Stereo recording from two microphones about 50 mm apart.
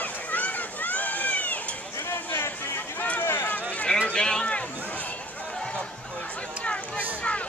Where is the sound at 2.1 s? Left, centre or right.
Left.